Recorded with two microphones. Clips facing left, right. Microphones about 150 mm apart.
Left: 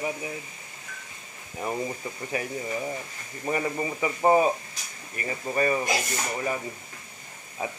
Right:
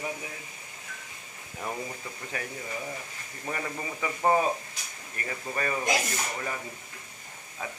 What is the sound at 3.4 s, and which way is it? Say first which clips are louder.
Speech: left 7 dB; 15° left (ahead or behind).